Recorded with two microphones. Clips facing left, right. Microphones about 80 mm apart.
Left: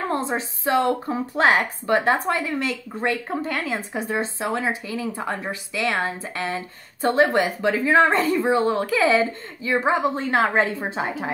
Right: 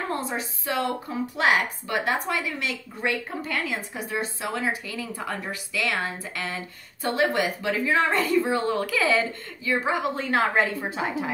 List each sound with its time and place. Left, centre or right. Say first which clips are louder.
0.1 s a woman's voice: left 4 dB; left